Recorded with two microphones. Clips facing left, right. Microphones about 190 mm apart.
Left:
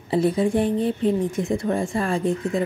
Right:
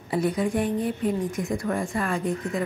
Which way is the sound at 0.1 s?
30° left (ahead or behind).